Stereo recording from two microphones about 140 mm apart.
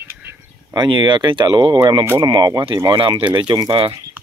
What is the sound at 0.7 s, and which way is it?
Speech, 35° right (ahead or behind).